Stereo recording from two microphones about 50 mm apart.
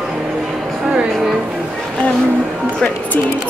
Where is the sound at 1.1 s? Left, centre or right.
Centre.